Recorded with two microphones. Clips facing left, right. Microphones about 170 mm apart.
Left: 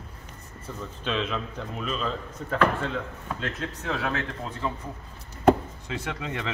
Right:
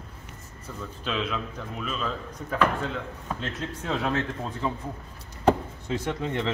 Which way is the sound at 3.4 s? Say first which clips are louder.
Even; 20° right (ahead or behind).